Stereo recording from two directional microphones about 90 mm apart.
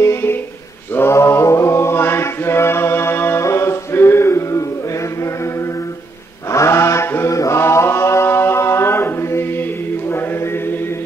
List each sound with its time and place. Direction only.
0.0 s a sound: 30° left (ahead or behind)
0.9 s mantra: 30° left (ahead or behind)
6.5 s mantra: 35° left (ahead or behind)